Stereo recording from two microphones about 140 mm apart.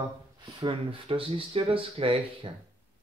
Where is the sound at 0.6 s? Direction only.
40° right (ahead or behind).